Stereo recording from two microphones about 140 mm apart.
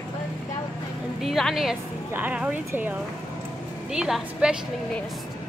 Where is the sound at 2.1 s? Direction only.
10° right (ahead or behind).